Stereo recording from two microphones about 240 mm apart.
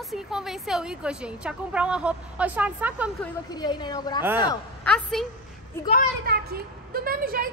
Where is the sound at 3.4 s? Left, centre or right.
Centre.